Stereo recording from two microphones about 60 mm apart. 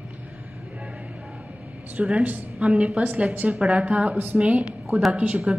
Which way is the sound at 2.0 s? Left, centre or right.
Right.